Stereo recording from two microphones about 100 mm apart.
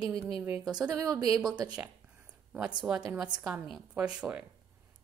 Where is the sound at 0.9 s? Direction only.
35° right (ahead or behind).